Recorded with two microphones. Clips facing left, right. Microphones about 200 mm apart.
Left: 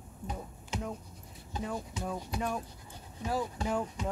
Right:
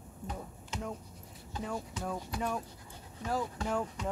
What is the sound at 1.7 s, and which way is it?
Speech, 15° left (ahead or behind).